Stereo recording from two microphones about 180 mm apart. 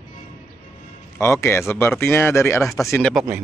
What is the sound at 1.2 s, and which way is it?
Speech, 15° left (ahead or behind).